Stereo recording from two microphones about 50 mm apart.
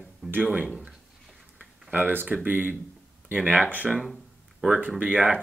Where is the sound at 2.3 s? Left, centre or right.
Right.